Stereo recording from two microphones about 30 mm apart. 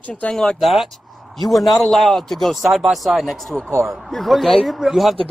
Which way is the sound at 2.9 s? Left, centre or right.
Centre.